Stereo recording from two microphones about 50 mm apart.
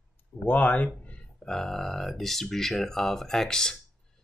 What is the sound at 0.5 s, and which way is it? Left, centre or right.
Speech, left.